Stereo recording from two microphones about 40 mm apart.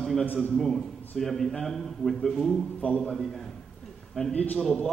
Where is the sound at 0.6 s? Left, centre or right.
Centre.